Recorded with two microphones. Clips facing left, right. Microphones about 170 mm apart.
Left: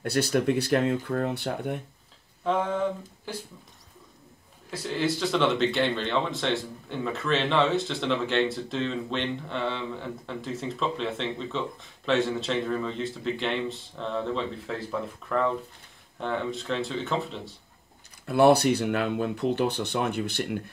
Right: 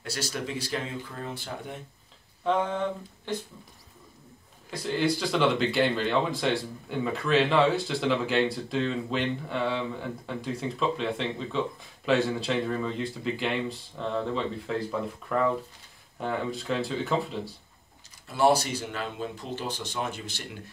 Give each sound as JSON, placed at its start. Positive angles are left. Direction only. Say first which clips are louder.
{"t": 0.0, "sound": "speech", "louder": "left 9 dB", "side_deg": 60}
{"t": 2.4, "sound": "a sound", "louder": "left 1 dB", "side_deg": 0}
{"t": 4.6, "sound": "speech", "louder": "right 1 dB", "side_deg": 0}
{"t": 18.2, "sound": "speech", "louder": "left 4 dB", "side_deg": 60}